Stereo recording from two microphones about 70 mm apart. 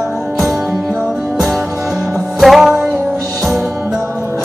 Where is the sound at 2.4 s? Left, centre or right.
Centre.